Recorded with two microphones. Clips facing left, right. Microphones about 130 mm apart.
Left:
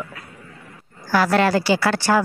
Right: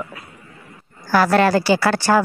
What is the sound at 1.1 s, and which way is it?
A woman's voice, 45° right (ahead or behind).